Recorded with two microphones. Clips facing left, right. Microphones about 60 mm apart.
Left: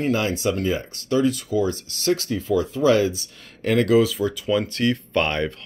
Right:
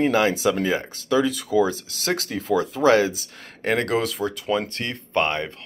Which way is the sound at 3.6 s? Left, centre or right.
Right.